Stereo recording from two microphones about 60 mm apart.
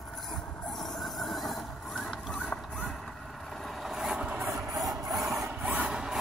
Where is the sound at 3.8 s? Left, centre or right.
Centre.